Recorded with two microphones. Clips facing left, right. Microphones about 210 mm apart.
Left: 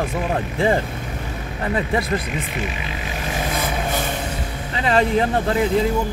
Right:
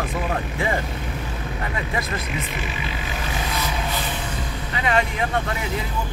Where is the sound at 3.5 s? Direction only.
50° left (ahead or behind).